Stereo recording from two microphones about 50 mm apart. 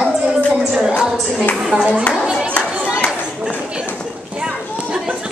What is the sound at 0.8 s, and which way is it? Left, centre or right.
Music, centre.